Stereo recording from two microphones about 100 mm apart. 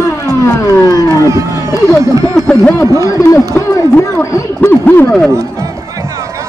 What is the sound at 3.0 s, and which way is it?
Siren, 35° left (ahead or behind).